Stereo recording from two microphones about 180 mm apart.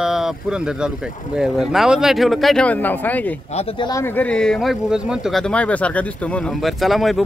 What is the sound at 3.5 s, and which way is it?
Speech, 35° left (ahead or behind).